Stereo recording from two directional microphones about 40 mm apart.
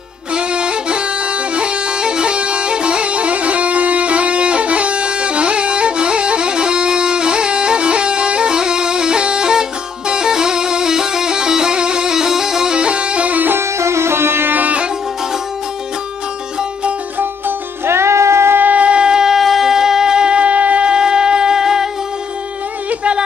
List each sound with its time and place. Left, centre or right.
0.3 s music: right
12.7 s music: right
13.3 s music: right
13.6 s music: right
14.5 s music: right
17.5 s music: right
18.6 s shofar: right
18.9 s shofar: right